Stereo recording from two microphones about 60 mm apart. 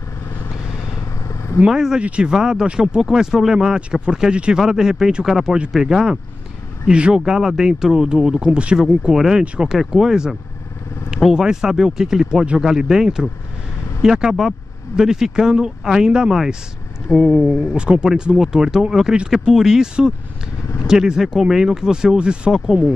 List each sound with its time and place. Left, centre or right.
1.7 s speech: centre
2.0 s speech: centre
9.1 s speech: centre